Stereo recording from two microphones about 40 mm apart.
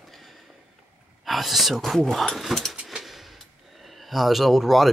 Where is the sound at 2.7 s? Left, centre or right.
Centre.